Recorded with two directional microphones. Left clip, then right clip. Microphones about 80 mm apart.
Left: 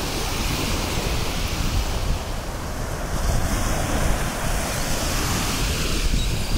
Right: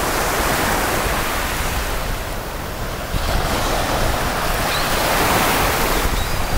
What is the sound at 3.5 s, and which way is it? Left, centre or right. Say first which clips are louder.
Vehicle: right 7 dB; right.